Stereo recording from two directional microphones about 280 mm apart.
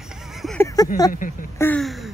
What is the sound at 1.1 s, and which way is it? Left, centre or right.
Speech, left.